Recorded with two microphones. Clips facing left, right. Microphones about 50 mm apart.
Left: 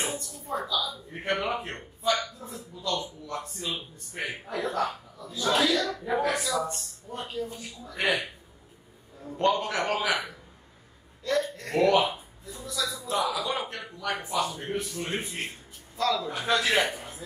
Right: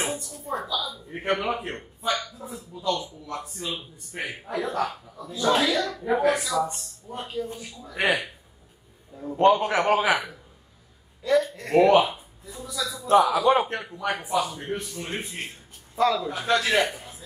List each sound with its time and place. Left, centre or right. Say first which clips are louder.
0.0 s a sound: right 3 dB; centre
1.2 s a man's voice: right 3 dB; centre
9.2 s a man's voice: right 6 dB; right
11.2 s a man's voice: right 5 dB; centre
11.7 s a man's voice: right 5 dB; centre
12.5 s a man's voice: right 1 dB; centre
13.3 s a man's voice: right 10 dB; right
14.2 s speech: right 3 dB; centre
16.0 s a man's voice: right 5 dB; centre
16.3 s speech: right 2 dB; centre